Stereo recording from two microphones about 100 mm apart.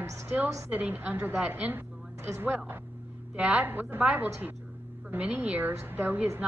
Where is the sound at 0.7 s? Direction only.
15° right (ahead or behind).